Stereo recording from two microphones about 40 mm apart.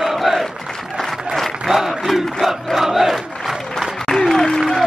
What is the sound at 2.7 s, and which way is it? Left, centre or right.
Crowd, centre.